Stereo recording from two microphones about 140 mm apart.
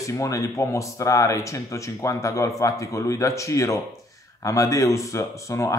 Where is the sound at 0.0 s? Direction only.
25° left (ahead or behind).